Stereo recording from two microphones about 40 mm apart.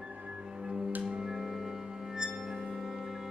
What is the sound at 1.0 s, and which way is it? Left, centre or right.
Music, centre.